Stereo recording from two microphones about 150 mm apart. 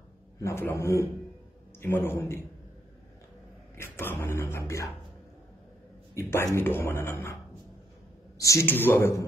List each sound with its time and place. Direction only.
0.4 s a man's voice: 20° left (ahead or behind)
3.7 s speech: 15° left (ahead or behind)
6.1 s speech: 20° left (ahead or behind)
8.4 s speech: 20° left (ahead or behind)